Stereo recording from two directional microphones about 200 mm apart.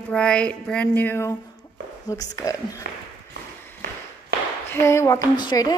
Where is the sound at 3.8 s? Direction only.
55° right (ahead or behind).